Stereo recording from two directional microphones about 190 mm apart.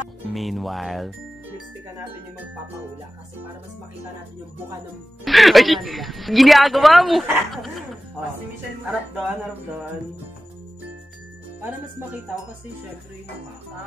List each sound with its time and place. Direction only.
0.3 s a woman's voice: centre (ahead or behind)
5.2 s a woman's voice: centre (ahead or behind)
8.8 s a woman's voice: 5° right (ahead or behind)